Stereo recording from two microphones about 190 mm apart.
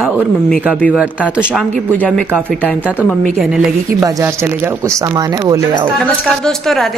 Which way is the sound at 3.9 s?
15° right (ahead or behind).